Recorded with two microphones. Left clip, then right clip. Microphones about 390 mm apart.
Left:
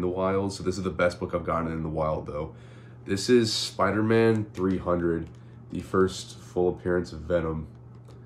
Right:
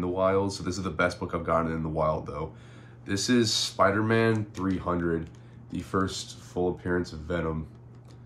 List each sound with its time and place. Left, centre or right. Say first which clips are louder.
0.0 s speech: right 1 dB; centre
5.2 s typing: left 2 dB; centre
6.0 s speech: left 4 dB; centre